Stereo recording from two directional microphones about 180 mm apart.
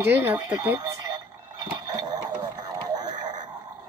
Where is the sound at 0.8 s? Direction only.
20° right (ahead or behind).